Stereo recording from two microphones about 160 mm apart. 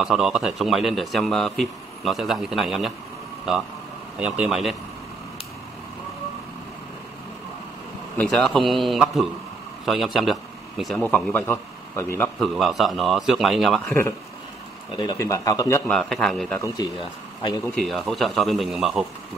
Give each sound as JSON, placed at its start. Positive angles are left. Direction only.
{"t": 0.0, "sound": "speech", "side_deg": 0}
{"t": 8.2, "sound": "a man's voice", "side_deg": 5}
{"t": 12.4, "sound": "speech", "side_deg": 0}
{"t": 13.8, "sound": "speech", "side_deg": 15}
{"t": 15.9, "sound": "speech", "side_deg": 5}
{"t": 17.6, "sound": "speech", "side_deg": 0}